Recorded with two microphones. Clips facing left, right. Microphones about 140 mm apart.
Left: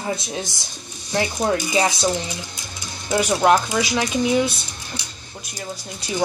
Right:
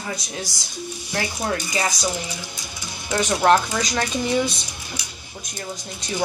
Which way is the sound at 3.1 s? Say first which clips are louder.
Left 1 dB; 15° left (ahead or behind).